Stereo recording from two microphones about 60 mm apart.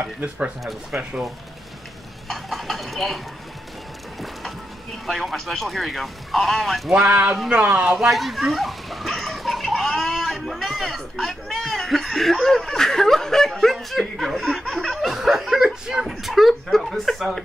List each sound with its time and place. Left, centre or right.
0.0 s speech: right
2.2 s a sound: centre
4.2 s a sound: centre
5.0 s speech: centre
7.4 s speech: centre
8.0 s speech: centre